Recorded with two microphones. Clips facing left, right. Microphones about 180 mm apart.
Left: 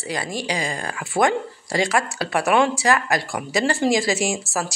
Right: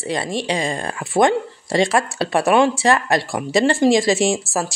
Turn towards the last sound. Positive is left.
turn(degrees=-25)  # may be behind; listen again after turning